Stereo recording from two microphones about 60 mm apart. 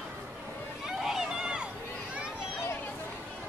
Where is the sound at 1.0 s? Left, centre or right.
Centre.